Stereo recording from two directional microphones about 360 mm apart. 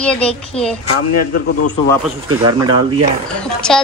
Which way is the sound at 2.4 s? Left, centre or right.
Centre.